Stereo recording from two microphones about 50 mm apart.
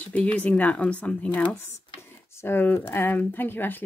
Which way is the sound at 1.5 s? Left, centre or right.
Left.